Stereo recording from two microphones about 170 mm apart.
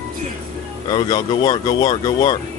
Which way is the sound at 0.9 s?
25° left (ahead or behind).